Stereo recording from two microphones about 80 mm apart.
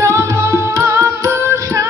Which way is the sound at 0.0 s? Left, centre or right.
Right.